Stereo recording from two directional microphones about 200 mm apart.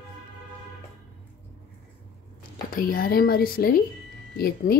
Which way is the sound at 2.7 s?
45° left (ahead or behind).